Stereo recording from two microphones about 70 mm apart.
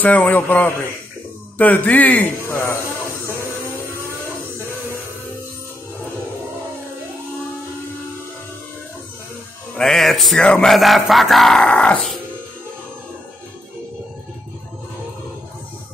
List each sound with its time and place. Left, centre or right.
0.0 s a man's voice: left
2.4 s speech: left
3.3 s music: left
3.9 s music: right
9.8 s music: centre
10.3 s speech: centre
10.7 s music: centre
11.6 s speech: centre